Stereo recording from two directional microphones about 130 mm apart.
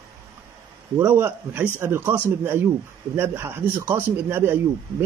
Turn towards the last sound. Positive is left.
turn(degrees=-15)  # may be behind; listen again after turning